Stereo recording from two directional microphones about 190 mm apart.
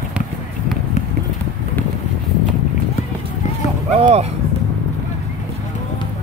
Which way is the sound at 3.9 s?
35° right (ahead or behind).